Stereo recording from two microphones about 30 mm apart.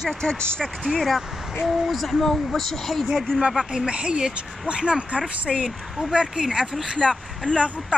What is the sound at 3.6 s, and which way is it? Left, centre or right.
Speech, right.